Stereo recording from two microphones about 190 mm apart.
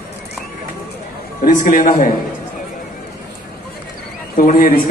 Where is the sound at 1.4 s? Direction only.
45° left (ahead or behind).